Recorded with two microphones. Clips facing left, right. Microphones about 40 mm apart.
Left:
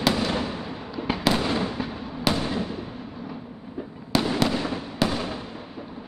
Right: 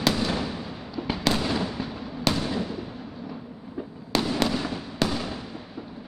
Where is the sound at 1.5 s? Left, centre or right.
Left.